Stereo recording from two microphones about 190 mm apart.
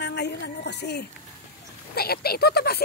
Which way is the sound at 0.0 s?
60° left (ahead or behind).